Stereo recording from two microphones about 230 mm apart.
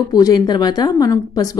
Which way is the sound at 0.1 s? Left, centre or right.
Centre.